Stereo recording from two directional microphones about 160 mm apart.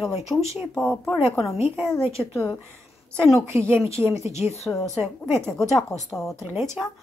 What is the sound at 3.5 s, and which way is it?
Speech, 15° right (ahead or behind).